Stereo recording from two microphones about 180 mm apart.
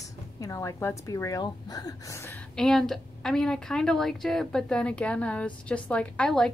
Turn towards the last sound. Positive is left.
turn(degrees=5)  # may be behind; listen again after turning